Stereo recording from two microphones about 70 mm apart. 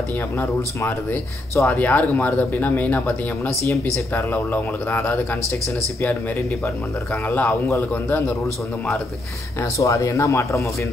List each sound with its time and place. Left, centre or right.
0.4 s speech: left
1.8 s speech: left
7.2 s speech: left
9.6 s speech: left